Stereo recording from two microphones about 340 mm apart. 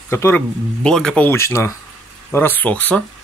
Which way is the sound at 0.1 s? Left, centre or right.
Centre.